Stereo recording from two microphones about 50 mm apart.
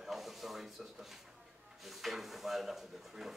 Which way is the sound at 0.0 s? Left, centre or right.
Centre.